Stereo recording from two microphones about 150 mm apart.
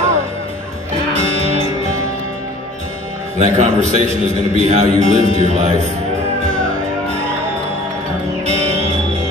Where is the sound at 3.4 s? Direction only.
45° right (ahead or behind).